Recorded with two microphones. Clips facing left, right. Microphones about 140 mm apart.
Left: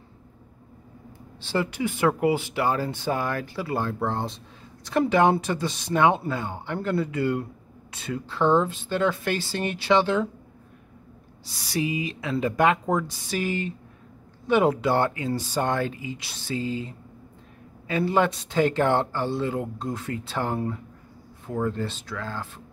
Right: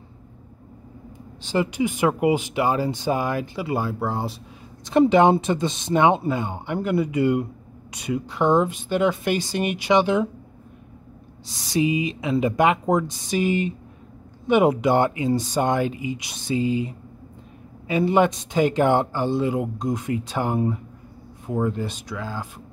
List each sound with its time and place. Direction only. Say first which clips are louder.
1.4 s speech: right 4 dB; 15° right (ahead or behind)
4.8 s speech: right 4 dB; 20° right (ahead or behind)
11.4 s speech: right 6 dB; 20° right (ahead or behind)